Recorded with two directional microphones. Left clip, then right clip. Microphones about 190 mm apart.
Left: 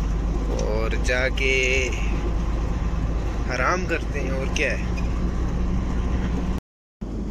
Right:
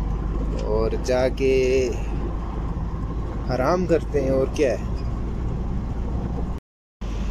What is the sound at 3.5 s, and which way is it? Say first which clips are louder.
Speech: right 3 dB; 30° right (ahead or behind).